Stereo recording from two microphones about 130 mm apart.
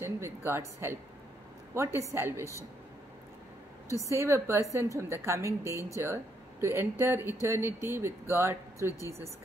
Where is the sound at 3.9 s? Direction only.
25° right (ahead or behind).